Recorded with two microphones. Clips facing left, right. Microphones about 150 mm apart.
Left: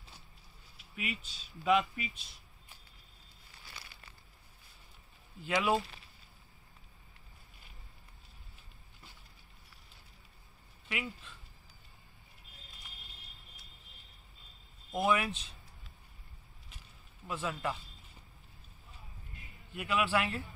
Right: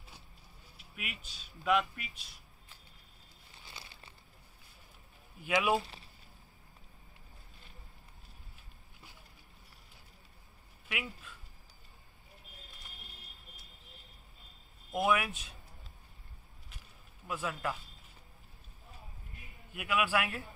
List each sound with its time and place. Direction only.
0.9 s speech: 5° right (ahead or behind)
3.6 s crumpling: 25° right (ahead or behind)
5.4 s a man's voice: 10° right (ahead or behind)
10.9 s speech: 5° right (ahead or behind)
14.9 s a man's voice: 10° right (ahead or behind)
17.3 s speech: centre (ahead or behind)
19.7 s a man's voice: 10° right (ahead or behind)